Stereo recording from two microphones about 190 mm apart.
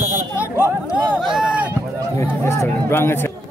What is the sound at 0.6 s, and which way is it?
Run, 5° right (ahead or behind).